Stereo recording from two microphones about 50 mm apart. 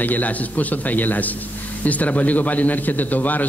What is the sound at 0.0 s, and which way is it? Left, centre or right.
A man's voice, left.